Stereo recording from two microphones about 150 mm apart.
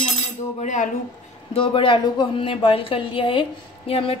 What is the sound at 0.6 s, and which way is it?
Speech, 55° left (ahead or behind).